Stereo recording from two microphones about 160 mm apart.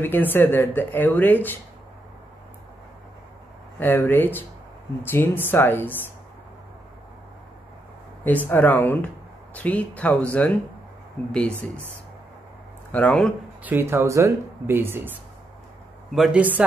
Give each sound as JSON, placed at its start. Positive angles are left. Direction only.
{"t": 0.0, "sound": "speech", "side_deg": 10}
{"t": 3.8, "sound": "speech", "side_deg": 10}
{"t": 8.2, "sound": "speech", "side_deg": 10}
{"t": 12.9, "sound": "speech", "side_deg": 10}
{"t": 13.6, "sound": "speech", "side_deg": -10}
{"t": 16.1, "sound": "speech", "side_deg": -5}